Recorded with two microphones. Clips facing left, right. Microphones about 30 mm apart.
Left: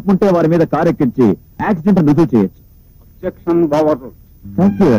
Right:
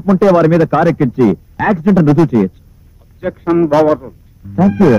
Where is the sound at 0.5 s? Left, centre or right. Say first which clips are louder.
Right 2 dB; centre.